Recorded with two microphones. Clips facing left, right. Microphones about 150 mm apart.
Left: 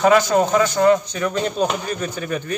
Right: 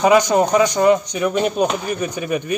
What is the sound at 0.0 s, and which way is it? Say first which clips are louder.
Speech: right 1 dB; 15° right (ahead or behind).